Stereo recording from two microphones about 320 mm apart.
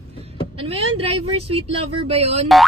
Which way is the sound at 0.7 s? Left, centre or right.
Centre.